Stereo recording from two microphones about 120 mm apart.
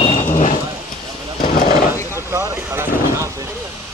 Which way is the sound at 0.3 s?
90° left.